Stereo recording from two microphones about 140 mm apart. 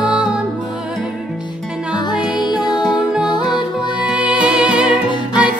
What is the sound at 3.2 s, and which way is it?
Music, 30° left (ahead or behind).